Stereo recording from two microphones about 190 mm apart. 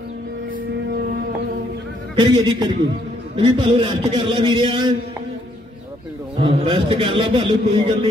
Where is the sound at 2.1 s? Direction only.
25° right (ahead or behind).